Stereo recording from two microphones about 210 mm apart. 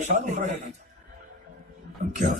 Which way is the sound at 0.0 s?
35° right (ahead or behind).